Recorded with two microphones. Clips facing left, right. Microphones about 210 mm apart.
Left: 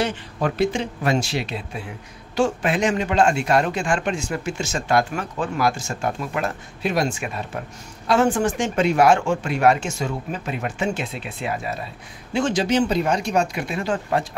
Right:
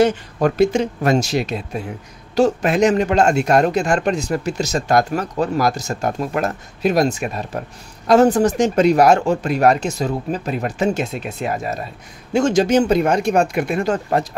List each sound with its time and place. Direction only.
0.0 s a man's voice: 45° right (ahead or behind)